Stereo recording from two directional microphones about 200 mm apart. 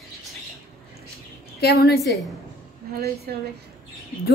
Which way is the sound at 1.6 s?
50° left (ahead or behind).